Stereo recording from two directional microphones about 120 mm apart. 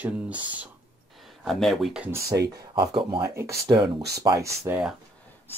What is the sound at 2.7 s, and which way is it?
Speech, 40° right (ahead or behind).